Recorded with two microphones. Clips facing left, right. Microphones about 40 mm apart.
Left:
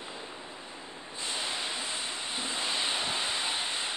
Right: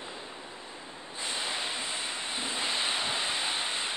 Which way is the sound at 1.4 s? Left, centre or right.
Centre.